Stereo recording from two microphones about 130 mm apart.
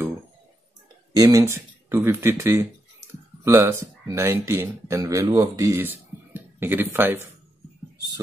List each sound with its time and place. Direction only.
1.1 s speech: 25° right (ahead or behind)